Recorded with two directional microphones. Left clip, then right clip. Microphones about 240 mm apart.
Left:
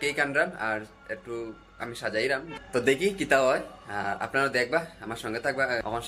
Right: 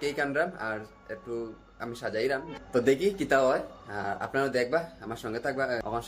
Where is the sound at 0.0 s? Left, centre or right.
Centre.